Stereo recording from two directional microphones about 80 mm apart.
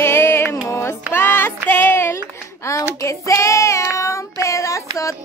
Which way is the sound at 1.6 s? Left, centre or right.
Left.